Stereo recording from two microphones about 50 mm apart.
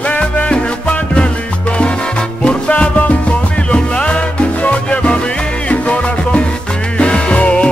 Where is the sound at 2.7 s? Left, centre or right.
Left.